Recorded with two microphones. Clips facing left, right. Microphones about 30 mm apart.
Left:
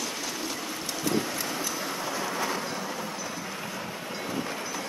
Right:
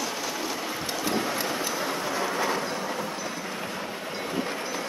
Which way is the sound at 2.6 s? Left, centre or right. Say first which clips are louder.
Right 3 dB; right.